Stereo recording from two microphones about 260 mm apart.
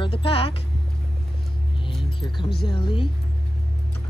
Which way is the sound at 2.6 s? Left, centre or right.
Centre.